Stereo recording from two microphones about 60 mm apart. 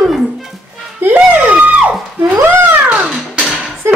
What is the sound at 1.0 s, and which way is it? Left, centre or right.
Music, right.